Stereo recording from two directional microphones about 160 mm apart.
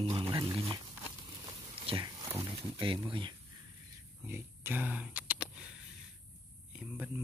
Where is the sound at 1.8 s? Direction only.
30° right (ahead or behind).